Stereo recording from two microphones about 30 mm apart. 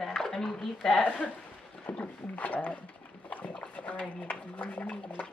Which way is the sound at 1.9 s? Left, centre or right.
Left.